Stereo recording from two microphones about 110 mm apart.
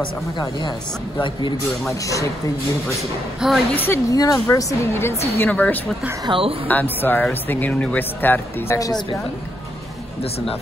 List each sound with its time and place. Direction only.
2.0 s speech: 30° left (ahead or behind)
3.3 s a woman's voice: centre (ahead or behind)
3.7 s speech: 20° left (ahead or behind)
4.1 s a woman's voice: 35° left (ahead or behind)
5.4 s speech: 15° left (ahead or behind)
6.2 s a woman's voice: 55° right (ahead or behind)
6.7 s speech: 15° left (ahead or behind)